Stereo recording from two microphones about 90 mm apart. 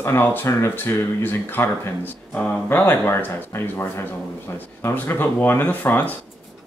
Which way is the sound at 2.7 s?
20° left (ahead or behind).